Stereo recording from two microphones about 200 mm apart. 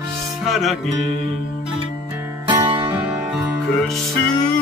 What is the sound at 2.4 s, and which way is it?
Music, 20° right (ahead or behind).